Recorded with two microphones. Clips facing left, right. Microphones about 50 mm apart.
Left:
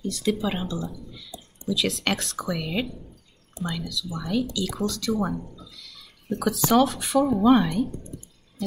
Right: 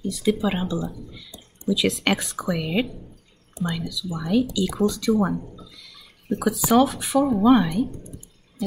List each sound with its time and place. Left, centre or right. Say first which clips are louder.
0.0 s speech: right 3 dB; centre